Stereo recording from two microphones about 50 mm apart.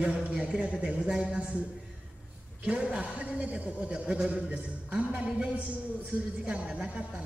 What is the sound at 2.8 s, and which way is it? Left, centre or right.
A man's voice, centre.